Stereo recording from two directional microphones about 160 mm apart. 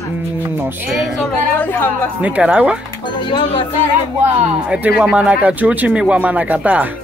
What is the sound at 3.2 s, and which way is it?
Speech, 30° left (ahead or behind).